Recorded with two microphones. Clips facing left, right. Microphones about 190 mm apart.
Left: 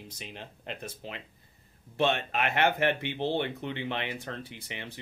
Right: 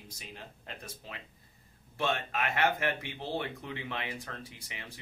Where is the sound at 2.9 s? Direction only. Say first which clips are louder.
Left 6 dB; 25° left (ahead or behind).